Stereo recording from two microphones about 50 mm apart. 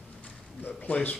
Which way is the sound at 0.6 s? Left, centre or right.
Left.